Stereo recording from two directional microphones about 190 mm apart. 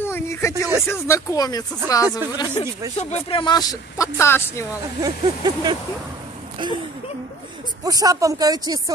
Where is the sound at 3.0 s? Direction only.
30° left (ahead or behind); by 4.7 s 15° left (ahead or behind).